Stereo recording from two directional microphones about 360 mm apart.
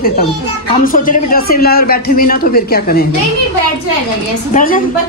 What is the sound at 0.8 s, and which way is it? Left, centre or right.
A man's voice, left.